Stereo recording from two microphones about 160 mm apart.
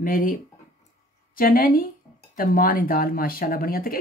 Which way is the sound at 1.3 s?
65° left (ahead or behind).